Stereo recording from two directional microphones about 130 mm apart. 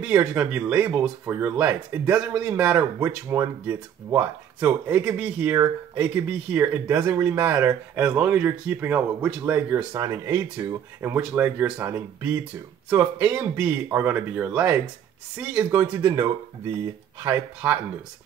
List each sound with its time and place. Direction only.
0.0 s speech: 10° right (ahead or behind)